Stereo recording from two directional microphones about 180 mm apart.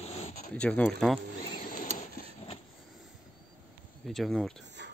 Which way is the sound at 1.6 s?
50° left (ahead or behind).